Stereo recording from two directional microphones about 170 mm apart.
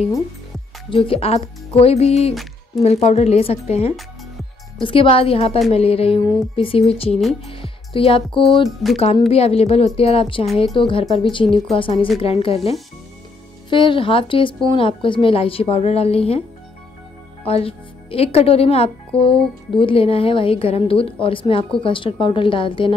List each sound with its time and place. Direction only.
0.8 s speech: 35° left (ahead or behind)
17.5 s speech: 35° left (ahead or behind)